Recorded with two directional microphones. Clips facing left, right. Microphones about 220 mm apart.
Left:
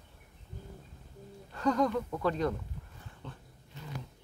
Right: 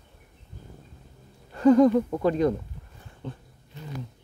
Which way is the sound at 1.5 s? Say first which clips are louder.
Right 12 dB; 25° right (ahead or behind).